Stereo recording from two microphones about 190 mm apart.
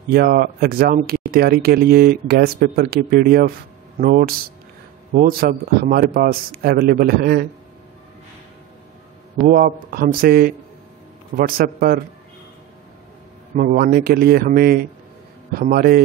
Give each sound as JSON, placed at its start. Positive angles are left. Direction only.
{"t": 0.1, "sound": "speech", "side_deg": -50}
{"t": 9.5, "sound": "speech", "side_deg": -50}
{"t": 13.6, "sound": "speech", "side_deg": -50}